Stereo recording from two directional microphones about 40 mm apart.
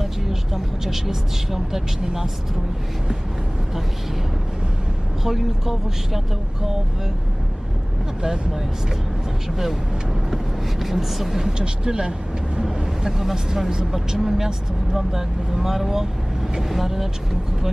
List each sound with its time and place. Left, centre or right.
0.8 s speech: centre
5.2 s speech: centre
8.2 s speech: centre
10.3 s speech: centre
12.5 s vehicle: centre
13.2 s speech: centre